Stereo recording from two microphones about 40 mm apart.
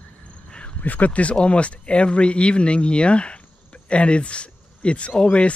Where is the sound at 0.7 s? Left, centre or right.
Left.